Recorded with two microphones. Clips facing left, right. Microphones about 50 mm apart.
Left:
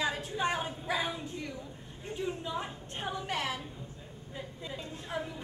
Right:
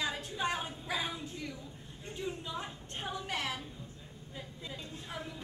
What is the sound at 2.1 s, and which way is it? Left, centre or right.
A woman's voice, centre.